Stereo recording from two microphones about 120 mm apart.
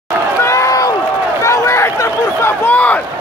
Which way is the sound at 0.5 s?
25° left (ahead or behind).